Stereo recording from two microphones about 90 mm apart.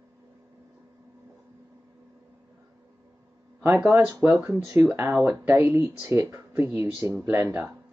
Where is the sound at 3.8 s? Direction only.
25° right (ahead or behind).